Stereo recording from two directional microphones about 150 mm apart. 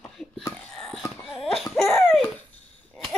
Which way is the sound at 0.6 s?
5° left (ahead or behind).